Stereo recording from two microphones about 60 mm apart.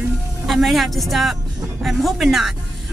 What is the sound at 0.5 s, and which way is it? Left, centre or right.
Speech, centre.